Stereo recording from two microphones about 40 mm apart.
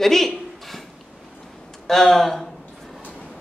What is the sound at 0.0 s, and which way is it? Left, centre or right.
Speech, centre.